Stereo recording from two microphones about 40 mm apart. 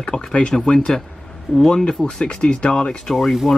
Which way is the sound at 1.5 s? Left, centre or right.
Centre.